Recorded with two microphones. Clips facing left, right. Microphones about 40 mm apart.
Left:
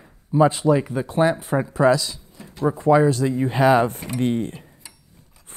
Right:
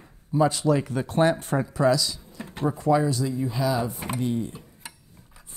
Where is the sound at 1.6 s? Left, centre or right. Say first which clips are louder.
Left 5 dB; left.